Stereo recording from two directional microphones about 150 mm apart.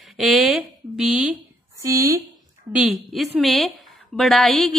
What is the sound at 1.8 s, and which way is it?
Speech, 20° right (ahead or behind).